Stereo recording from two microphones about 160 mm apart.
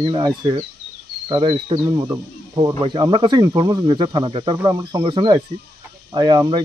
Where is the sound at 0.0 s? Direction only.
25° right (ahead or behind).